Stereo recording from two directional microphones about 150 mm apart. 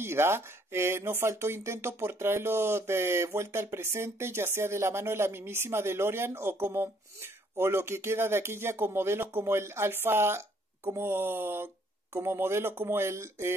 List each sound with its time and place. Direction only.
0.0 s speech: 15° right (ahead or behind)